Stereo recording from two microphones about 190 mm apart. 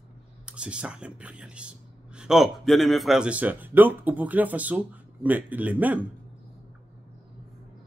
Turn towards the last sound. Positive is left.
turn(degrees=-10)  # may be behind; listen again after turning